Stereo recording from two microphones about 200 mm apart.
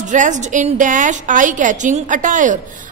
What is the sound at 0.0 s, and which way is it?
A woman's voice, 40° right (ahead or behind).